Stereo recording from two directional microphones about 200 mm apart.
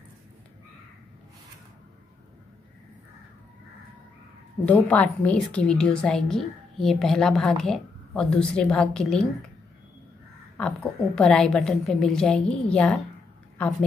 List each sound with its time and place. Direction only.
4.6 s a woman's voice: 5° left (ahead or behind)
10.6 s a woman's voice: 5° left (ahead or behind)